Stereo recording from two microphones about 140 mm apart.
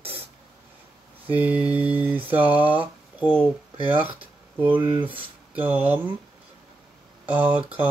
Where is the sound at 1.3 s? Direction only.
10° right (ahead or behind).